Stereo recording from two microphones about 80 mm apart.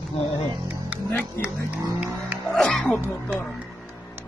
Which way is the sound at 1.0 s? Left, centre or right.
Left.